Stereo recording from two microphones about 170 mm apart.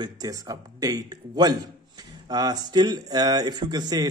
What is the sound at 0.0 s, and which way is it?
Speech, 20° right (ahead or behind).